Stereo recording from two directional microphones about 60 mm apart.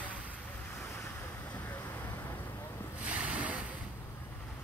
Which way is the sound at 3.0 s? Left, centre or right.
Right.